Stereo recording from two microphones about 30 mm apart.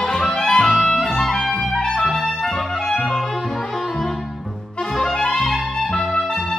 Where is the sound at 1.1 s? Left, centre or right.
Centre.